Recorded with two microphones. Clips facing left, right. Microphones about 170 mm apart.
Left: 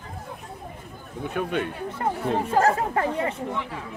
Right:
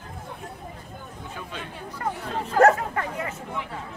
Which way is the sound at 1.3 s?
65° left (ahead or behind).